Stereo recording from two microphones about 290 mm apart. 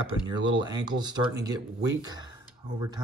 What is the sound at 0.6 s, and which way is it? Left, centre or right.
Speech, centre.